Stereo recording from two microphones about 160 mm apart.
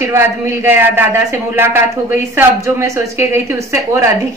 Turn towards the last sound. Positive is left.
turn(degrees=-15)  # may be behind; listen again after turning